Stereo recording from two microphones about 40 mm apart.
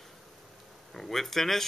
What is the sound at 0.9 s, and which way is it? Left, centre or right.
Speech, centre.